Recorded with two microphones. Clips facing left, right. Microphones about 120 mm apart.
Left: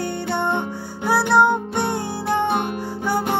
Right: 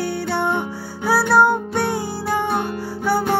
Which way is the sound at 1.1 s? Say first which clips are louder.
Right 1 dB; 20° left (ahead or behind).